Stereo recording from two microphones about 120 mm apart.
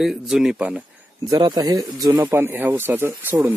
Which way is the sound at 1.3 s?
35° right (ahead or behind).